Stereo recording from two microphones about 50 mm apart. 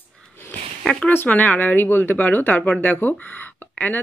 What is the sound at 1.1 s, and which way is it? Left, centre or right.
Speech, left.